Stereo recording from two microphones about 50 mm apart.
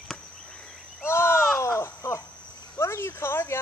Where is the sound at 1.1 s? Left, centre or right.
Left.